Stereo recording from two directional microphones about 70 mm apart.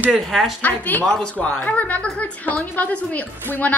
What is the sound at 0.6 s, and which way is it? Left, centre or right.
Speech, left.